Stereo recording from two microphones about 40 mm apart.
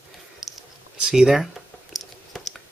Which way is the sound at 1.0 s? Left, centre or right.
Centre.